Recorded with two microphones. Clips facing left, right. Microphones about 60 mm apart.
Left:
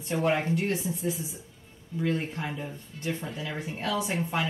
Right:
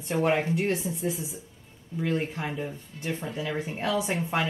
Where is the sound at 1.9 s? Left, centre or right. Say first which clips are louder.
Right 1 dB; centre.